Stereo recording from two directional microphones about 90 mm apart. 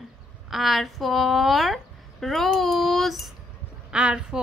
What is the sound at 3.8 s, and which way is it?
Speech, 10° right (ahead or behind).